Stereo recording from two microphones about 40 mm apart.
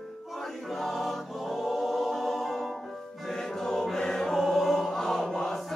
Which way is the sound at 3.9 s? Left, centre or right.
Centre.